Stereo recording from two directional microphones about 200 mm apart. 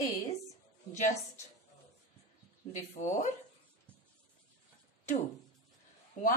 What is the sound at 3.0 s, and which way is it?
Speech, 40° left (ahead or behind).